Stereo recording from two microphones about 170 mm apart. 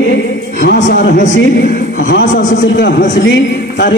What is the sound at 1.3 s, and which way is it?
Speech, 80° left.